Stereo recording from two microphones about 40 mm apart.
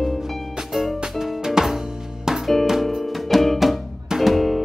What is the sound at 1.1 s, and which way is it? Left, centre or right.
Music, centre.